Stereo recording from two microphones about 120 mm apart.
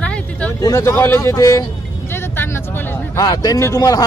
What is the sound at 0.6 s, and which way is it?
Speech, 25° left (ahead or behind).